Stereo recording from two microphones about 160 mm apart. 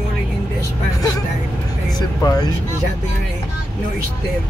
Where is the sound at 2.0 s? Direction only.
25° left (ahead or behind).